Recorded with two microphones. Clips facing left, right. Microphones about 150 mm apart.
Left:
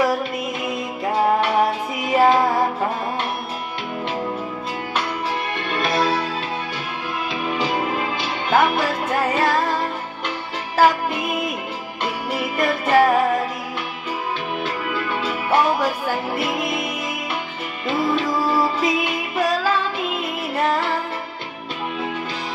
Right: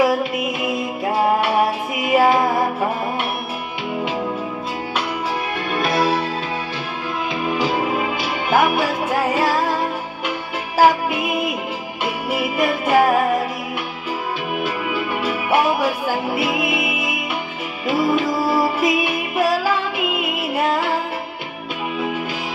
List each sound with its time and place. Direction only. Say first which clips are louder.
1.0 s music: even; 10° right (ahead or behind)
5.7 s music: right 2 dB; 5° right (ahead or behind)
7.4 s music: right 2 dB; 5° right (ahead or behind)
10.8 s music: right 2 dB; 10° right (ahead or behind)
14.6 s music: right 2 dB; 10° right (ahead or behind)